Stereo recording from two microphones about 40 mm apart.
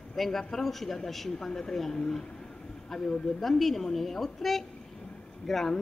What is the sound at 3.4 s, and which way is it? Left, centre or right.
A woman's voice, centre.